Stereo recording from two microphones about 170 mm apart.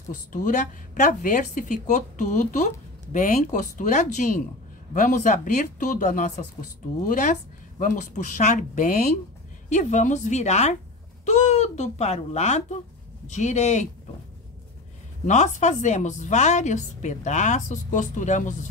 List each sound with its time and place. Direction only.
0.1 s speech: 50° left (ahead or behind)
15.2 s speech: 45° left (ahead or behind)